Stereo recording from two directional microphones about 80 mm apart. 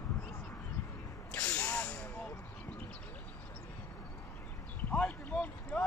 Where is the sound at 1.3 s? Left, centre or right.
Centre.